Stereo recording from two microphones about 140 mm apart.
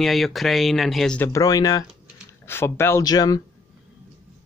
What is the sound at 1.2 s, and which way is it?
Speech, 25° left (ahead or behind).